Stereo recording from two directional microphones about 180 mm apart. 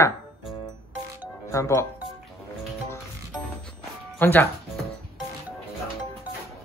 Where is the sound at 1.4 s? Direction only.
15° left (ahead or behind).